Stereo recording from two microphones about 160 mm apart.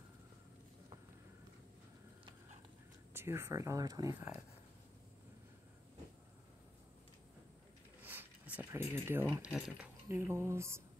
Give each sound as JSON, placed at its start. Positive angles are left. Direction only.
{"t": 3.1, "sound": "speech", "side_deg": -15}
{"t": 8.0, "sound": "a sound", "side_deg": -10}
{"t": 9.3, "sound": "speech", "side_deg": -5}